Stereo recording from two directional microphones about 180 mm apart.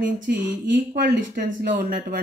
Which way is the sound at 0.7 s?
65° right (ahead or behind).